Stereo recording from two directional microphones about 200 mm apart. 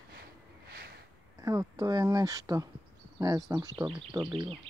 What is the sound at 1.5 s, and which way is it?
Speech, 15° right (ahead or behind).